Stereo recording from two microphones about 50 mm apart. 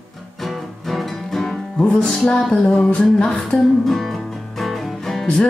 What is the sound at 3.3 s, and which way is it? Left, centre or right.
Music, centre.